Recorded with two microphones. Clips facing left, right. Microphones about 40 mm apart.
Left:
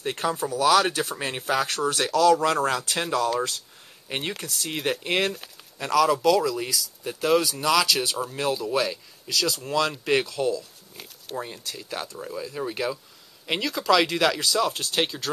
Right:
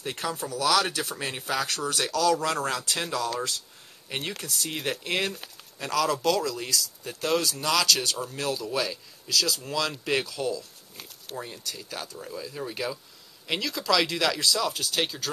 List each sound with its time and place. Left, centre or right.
0.0 s speech: centre